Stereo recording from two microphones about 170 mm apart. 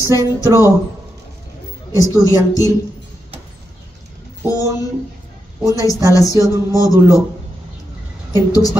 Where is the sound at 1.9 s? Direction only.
20° left (ahead or behind).